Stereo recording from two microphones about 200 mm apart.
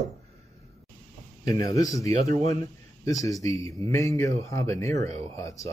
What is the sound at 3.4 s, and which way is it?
Speech, 15° left (ahead or behind).